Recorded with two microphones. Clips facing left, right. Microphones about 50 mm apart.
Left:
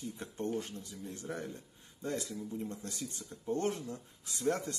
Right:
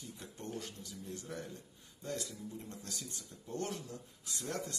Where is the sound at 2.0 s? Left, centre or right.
Left.